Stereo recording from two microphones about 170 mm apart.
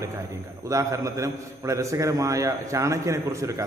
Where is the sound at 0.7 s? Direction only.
20° right (ahead or behind).